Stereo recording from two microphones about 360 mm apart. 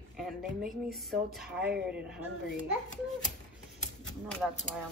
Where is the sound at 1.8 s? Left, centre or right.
Centre.